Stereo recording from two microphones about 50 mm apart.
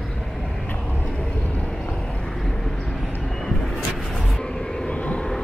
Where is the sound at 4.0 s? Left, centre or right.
Centre.